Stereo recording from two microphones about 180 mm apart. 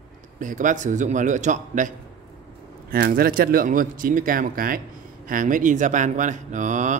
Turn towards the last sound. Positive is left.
turn(degrees=-40)  # may be behind; listen again after turning